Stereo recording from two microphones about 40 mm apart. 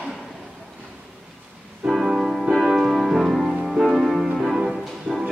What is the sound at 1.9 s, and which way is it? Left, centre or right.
Music, centre.